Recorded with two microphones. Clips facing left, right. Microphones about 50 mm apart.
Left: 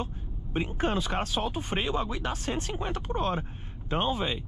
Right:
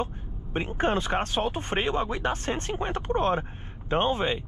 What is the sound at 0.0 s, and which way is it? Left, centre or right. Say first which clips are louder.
Speech: right 4 dB; right.